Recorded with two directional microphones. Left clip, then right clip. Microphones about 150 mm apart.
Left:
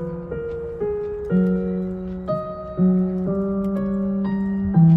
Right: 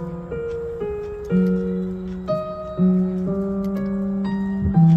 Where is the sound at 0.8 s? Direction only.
10° left (ahead or behind).